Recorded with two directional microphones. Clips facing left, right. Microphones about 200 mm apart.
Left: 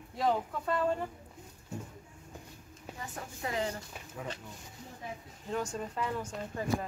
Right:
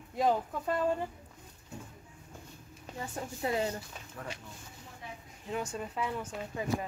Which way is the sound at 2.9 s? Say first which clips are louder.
Right 3 dB; 5° left (ahead or behind).